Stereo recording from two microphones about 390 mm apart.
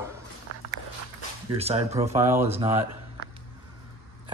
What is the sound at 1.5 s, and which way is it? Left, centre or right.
Speech, centre.